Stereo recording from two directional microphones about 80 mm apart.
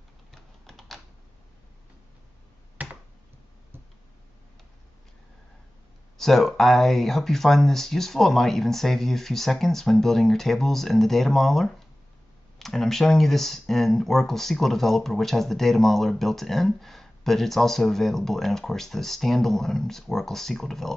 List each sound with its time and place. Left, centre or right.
0.3 s typing: centre
2.8 s finger snapping: centre
6.1 s speech: centre